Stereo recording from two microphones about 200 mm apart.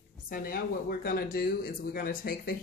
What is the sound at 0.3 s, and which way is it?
Speech, 45° left (ahead or behind).